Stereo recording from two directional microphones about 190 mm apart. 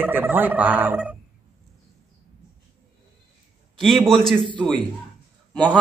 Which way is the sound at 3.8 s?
Centre (ahead or behind).